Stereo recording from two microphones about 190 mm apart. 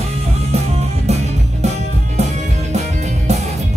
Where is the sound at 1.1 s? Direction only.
35° right (ahead or behind).